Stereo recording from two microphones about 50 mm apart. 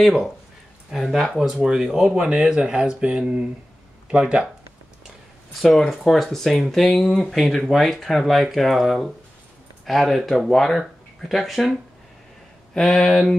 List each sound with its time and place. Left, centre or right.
0.0 s speech: centre
2.0 s speech: right
5.6 s speech: centre
12.7 s speech: centre